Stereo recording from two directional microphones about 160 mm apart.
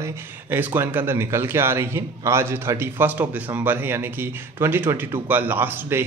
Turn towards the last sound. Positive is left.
turn(degrees=-15)  # may be behind; listen again after turning